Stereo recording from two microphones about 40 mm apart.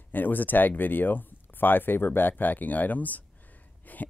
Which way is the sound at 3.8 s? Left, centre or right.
Left.